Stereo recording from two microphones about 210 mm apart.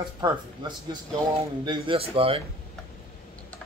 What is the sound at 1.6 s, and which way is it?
Speech, 20° right (ahead or behind).